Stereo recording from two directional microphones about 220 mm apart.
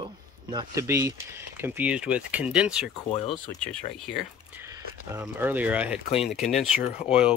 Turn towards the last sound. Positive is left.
turn(degrees=-5)  # may be behind; listen again after turning